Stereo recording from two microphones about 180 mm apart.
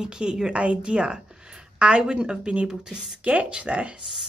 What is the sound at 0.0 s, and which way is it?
A woman's voice, 5° right (ahead or behind).